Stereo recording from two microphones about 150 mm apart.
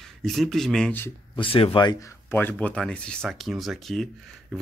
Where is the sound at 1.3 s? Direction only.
35° left (ahead or behind).